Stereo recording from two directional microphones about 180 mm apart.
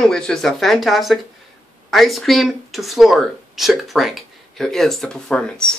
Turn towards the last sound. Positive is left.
turn(degrees=5)  # may be behind; listen again after turning